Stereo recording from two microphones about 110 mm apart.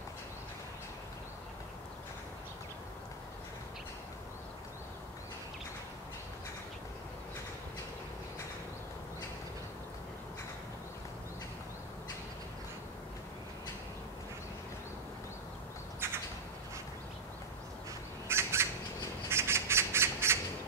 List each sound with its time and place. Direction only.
16.0 s bird: 20° right (ahead or behind)
18.3 s squawk: 25° right (ahead or behind)